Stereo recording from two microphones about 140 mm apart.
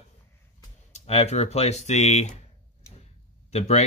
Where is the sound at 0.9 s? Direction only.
50° left (ahead or behind).